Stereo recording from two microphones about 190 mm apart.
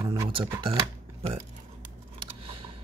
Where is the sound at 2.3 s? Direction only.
25° right (ahead or behind).